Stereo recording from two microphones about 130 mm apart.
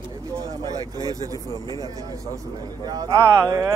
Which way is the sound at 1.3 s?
25° left (ahead or behind).